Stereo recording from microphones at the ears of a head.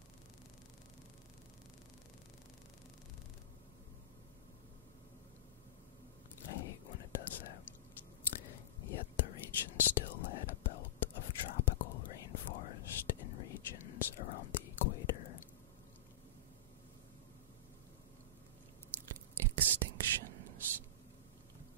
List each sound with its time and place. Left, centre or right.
6.4 s whispering: left
18.9 s whispering: right